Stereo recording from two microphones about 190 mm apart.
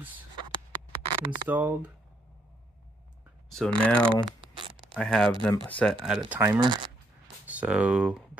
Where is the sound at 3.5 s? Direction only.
5° left (ahead or behind).